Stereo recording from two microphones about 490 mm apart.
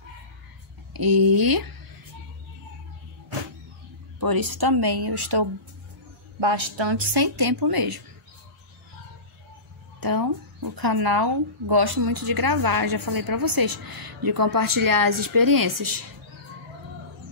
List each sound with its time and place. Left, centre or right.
0.9 s speech: right
4.2 s speech: right
6.4 s speech: right
9.9 s speech: right